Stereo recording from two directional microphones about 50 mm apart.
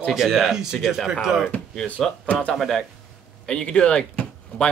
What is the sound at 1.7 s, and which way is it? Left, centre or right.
Speech, centre.